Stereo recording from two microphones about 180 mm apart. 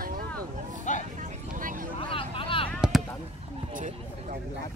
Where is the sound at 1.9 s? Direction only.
30° left (ahead or behind).